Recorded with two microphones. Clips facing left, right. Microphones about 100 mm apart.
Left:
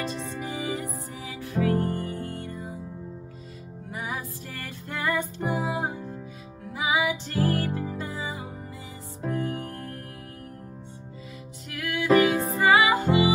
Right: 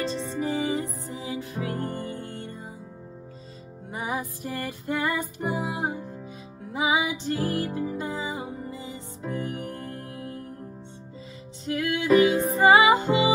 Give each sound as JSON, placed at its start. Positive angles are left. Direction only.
{"t": 0.0, "sound": "music", "side_deg": -30}
{"t": 3.9, "sound": "music", "side_deg": -25}
{"t": 9.8, "sound": "music", "side_deg": -20}
{"t": 11.6, "sound": "music", "side_deg": -25}